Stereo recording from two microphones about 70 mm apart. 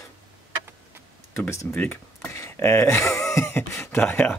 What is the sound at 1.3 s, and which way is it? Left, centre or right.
Speech, left.